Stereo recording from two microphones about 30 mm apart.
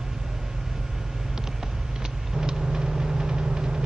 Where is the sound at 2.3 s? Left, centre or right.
Centre.